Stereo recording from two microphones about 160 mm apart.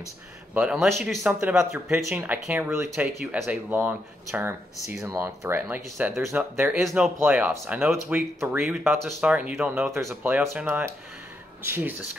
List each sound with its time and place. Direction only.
0.6 s speech: 5° right (ahead or behind)
1.4 s speech: 15° right (ahead or behind)